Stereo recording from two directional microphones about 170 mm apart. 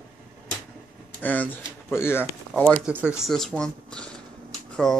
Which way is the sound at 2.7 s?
10° right (ahead or behind).